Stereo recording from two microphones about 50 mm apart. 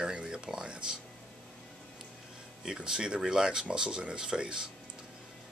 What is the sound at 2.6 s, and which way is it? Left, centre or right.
Speech, centre.